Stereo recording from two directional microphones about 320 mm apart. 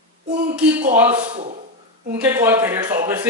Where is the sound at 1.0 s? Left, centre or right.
Centre.